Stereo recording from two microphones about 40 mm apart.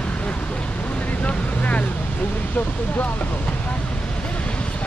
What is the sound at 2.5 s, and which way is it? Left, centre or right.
Speech, left.